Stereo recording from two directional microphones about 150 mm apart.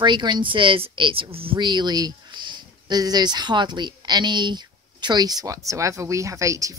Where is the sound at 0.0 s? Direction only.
30° right (ahead or behind).